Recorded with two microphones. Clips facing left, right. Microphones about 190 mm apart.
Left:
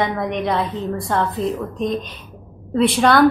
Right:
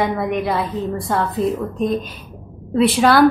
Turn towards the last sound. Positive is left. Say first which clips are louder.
# right 1 dB
turn(degrees=0)  # may be behind; listen again after turning